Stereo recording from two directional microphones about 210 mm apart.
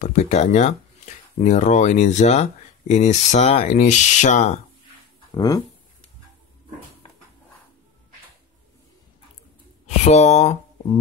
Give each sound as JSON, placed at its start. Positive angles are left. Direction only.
{"t": 0.0, "sound": "speech", "side_deg": 35}
{"t": 5.3, "sound": "speech", "side_deg": 15}
{"t": 9.8, "sound": "speech", "side_deg": 30}